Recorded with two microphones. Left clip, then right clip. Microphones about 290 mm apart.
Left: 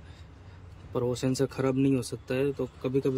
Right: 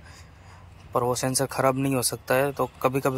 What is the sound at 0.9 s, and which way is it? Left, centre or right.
Speech, centre.